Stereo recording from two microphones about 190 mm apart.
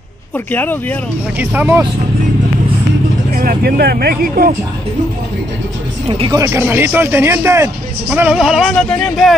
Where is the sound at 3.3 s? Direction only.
50° right (ahead or behind).